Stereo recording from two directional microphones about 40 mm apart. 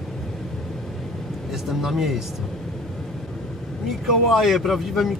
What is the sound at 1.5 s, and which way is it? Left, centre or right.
Speech, centre.